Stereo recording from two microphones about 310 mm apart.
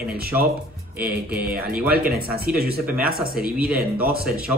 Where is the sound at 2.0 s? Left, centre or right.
Right.